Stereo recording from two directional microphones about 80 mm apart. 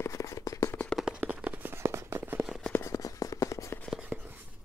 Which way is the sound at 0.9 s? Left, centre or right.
Centre.